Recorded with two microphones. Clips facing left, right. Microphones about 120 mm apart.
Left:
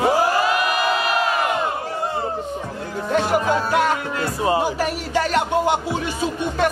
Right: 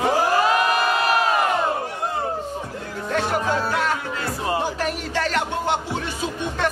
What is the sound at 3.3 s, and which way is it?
Music, 15° left (ahead or behind).